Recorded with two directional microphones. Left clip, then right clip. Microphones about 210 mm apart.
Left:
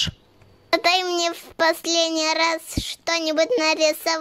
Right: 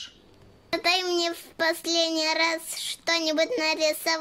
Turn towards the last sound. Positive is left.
turn(degrees=45)  # may be behind; listen again after turning